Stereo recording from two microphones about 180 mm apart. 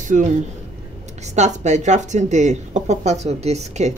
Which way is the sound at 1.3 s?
40° right (ahead or behind).